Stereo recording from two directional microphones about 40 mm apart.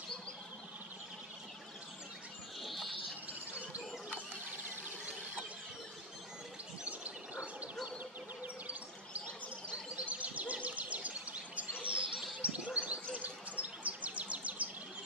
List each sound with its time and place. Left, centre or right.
2.6 s a sound: centre
10.0 s bird: right
11.8 s chirp: right
13.1 s bird: right